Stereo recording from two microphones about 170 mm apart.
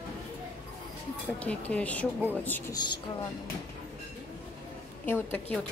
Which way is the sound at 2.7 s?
25° left (ahead or behind).